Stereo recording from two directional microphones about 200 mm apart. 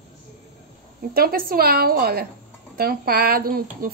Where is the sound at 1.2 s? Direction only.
50° right (ahead or behind).